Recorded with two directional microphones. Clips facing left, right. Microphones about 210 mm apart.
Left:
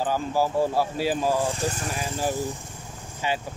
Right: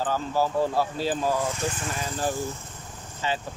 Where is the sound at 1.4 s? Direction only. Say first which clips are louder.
Left 2 dB; 30° left (ahead or behind).